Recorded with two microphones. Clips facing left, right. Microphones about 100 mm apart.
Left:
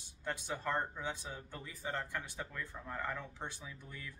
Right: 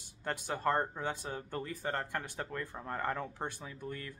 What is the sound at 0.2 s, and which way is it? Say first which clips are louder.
A man's voice: right 5 dB; 55° right (ahead or behind).